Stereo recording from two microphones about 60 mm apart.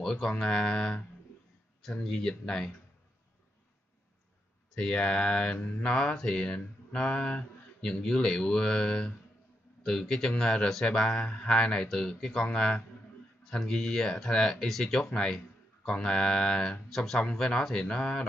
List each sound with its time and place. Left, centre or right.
0.0 s speech: centre
4.7 s speech: centre
17.2 s speech: centre